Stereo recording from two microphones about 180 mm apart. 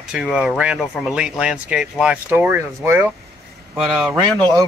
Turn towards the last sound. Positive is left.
turn(degrees=0)  # may be behind; listen again after turning